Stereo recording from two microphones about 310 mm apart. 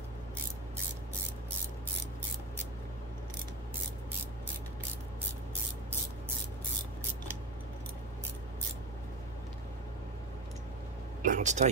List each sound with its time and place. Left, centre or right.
11.2 s speech: right